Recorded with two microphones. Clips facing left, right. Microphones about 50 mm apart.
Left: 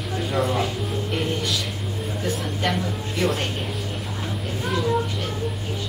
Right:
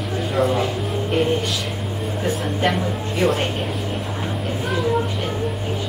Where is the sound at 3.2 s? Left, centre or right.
Centre.